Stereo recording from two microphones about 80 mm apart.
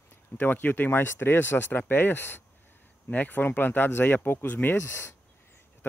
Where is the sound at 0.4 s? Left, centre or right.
Left.